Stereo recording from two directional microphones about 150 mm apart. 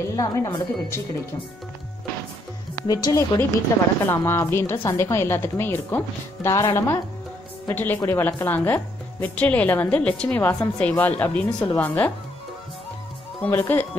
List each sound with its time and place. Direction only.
0.0 s speech: 20° left (ahead or behind)
2.7 s a woman's voice: 25° left (ahead or behind)
13.4 s a woman's voice: 15° left (ahead or behind)